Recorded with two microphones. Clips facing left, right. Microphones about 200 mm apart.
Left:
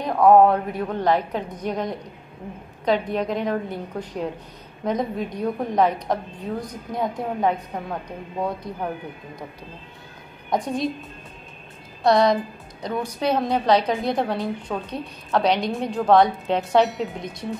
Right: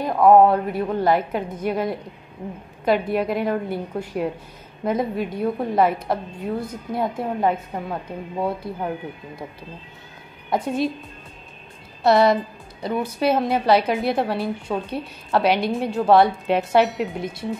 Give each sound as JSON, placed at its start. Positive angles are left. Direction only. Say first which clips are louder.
{"t": 0.0, "sound": "a woman's voice", "louder": "right 1 dB", "side_deg": -5}
{"t": 10.5, "sound": "a woman's voice", "louder": "right 2 dB", "side_deg": -5}
{"t": 12.0, "sound": "a woman's voice", "louder": "right 1 dB", "side_deg": -5}